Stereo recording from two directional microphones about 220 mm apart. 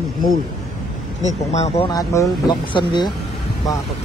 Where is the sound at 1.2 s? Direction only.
30° left (ahead or behind).